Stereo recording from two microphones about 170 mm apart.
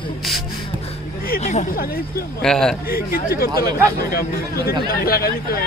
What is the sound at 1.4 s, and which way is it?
Speech, 45° left (ahead or behind).